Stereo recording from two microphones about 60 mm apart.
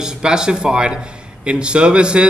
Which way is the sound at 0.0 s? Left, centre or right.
Centre.